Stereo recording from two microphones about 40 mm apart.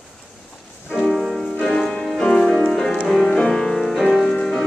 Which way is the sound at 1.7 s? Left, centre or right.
Centre.